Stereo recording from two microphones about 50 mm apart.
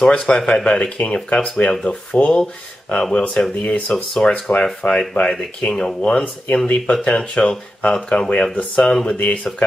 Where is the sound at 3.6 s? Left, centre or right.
Left.